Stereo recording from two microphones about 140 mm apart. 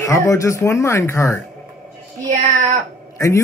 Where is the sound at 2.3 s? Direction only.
60° right (ahead or behind).